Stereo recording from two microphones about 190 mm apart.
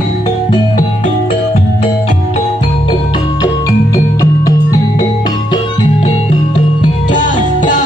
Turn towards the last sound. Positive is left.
turn(degrees=40)  # may be behind; listen again after turning